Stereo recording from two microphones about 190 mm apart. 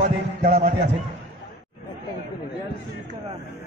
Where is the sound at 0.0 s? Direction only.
50° right (ahead or behind).